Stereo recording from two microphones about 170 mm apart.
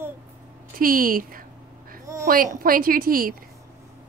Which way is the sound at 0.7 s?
55° right (ahead or behind).